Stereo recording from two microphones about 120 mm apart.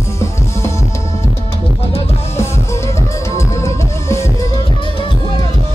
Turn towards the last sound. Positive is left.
turn(degrees=25)  # may be behind; listen again after turning